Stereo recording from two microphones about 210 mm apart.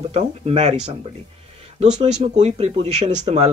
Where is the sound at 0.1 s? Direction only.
30° right (ahead or behind).